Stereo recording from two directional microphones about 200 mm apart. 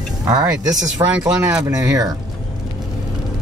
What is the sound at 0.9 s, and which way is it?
Speech, 15° right (ahead or behind).